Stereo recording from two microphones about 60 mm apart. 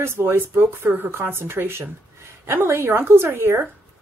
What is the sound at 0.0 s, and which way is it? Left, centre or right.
Speech, right.